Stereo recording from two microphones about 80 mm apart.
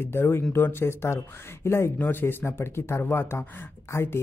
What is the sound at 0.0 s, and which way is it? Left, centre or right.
Speech, left.